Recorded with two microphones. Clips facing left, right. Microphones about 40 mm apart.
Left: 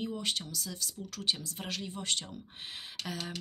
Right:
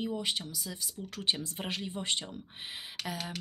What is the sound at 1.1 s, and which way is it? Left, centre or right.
Speech, right.